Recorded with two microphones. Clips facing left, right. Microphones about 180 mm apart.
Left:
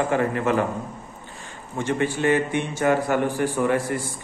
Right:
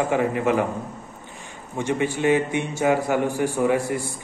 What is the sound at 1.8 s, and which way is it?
A man's voice, 15° right (ahead or behind).